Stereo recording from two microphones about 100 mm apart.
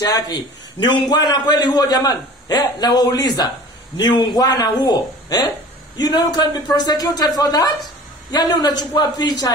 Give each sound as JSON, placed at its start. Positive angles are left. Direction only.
{"t": 0.0, "sound": "a man's voice", "side_deg": 45}